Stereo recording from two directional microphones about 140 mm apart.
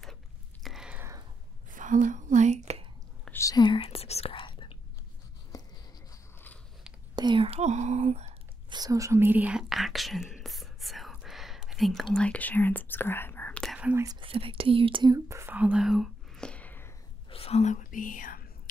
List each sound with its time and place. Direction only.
0.7 s whispering: 5° right (ahead or behind)
1.7 s whispering: 65° right (ahead or behind)
3.3 s whispering: 20° left (ahead or behind)
5.5 s writing: 25° left (ahead or behind)
6.3 s biting: 15° left (ahead or behind)
7.2 s whispering: 35° right (ahead or behind); by 8.4 s 50° right (ahead or behind)
8.6 s whispering: 30° right (ahead or behind); by 13.7 s 10° left (ahead or behind)
13.7 s whispering: 10° right (ahead or behind)
14.2 s whispering: 40° right (ahead or behind)
15.1 s whispering: 20° right (ahead or behind); by 16.9 s 15° left (ahead or behind)
17.3 s whispering: 45° left (ahead or behind); by 18.4 s 75° left (ahead or behind)